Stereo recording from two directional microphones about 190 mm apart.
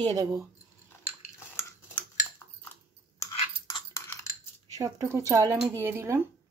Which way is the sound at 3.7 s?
15° left (ahead or behind).